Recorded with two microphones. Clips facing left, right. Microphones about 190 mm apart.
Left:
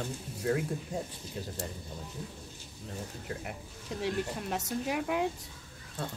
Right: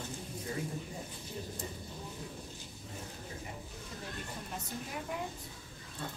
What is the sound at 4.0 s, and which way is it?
Speech, 80° left.